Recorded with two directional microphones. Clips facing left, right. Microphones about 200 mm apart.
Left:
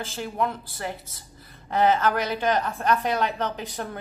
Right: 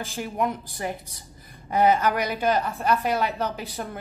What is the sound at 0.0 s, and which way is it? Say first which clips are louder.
A woman's voice: right 1 dB; 10° right (ahead or behind).